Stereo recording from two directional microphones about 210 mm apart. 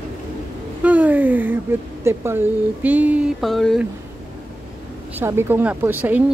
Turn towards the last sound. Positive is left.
turn(degrees=-10)  # may be behind; listen again after turning